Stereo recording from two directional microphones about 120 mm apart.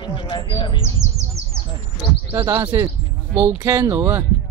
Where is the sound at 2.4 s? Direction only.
25° right (ahead or behind).